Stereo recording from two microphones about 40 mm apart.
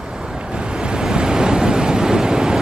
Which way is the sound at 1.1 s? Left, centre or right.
Centre.